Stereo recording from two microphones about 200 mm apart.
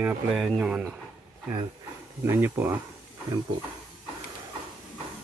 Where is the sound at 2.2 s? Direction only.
10° right (ahead or behind).